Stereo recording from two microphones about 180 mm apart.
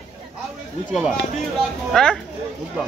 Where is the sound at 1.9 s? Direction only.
5° left (ahead or behind).